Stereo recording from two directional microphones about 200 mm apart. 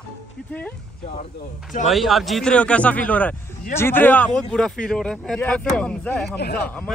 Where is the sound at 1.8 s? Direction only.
Centre (ahead or behind).